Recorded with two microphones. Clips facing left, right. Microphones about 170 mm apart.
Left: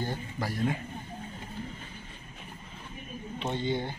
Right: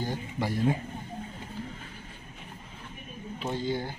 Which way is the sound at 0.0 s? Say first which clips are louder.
Right 2 dB; 15° right (ahead or behind).